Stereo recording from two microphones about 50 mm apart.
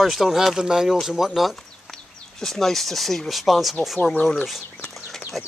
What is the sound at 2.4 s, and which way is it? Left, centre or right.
Speech, centre.